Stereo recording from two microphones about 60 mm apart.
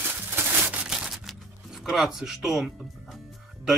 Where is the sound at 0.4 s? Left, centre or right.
Right.